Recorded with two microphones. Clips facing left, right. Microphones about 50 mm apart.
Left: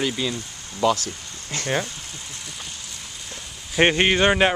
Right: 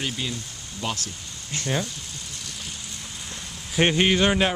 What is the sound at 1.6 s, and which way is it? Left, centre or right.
Speech, left.